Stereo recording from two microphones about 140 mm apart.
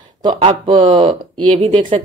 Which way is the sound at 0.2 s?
40° right (ahead or behind).